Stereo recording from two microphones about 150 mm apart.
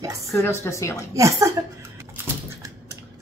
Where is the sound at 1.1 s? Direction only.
20° right (ahead or behind).